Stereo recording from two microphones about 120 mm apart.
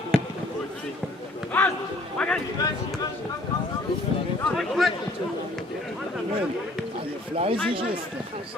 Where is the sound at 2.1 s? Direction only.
10° left (ahead or behind).